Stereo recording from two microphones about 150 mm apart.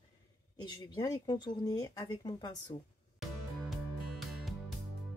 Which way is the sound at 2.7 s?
40° left (ahead or behind).